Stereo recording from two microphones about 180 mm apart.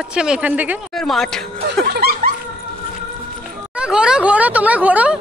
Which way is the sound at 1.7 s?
60° right (ahead or behind).